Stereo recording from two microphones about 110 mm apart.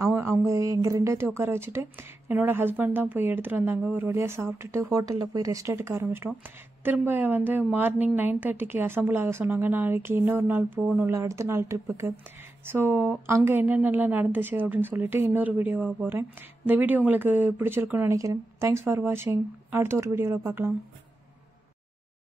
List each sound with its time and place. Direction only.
0.0 s speech: 25° right (ahead or behind)
11.1 s a woman's voice: 25° right (ahead or behind)
18.1 s speech: 30° right (ahead or behind)